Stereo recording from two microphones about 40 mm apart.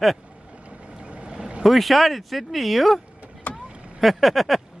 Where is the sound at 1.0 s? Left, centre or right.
Right.